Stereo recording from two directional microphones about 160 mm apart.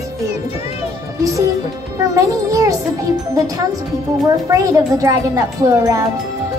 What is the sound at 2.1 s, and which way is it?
Music, 20° right (ahead or behind).